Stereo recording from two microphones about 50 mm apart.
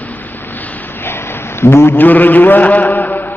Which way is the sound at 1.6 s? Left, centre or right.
Left.